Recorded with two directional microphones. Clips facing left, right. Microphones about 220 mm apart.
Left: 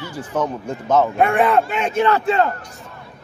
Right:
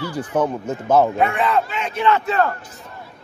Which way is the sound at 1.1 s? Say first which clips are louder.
Left 3 dB; 50° left (ahead or behind).